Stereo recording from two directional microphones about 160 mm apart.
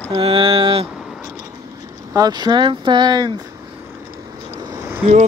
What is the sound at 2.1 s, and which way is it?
Speech, 25° right (ahead or behind).